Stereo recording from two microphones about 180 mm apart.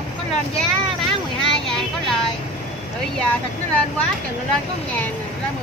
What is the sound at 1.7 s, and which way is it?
Speech, centre (ahead or behind).